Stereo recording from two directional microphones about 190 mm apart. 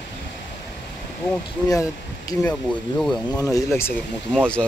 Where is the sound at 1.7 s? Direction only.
15° left (ahead or behind).